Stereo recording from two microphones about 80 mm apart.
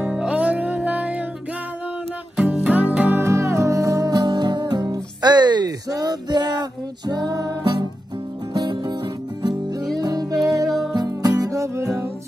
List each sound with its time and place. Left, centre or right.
0.0 s music: centre
2.3 s music: centre
3.2 s music: right
8.5 s music: right
9.9 s music: right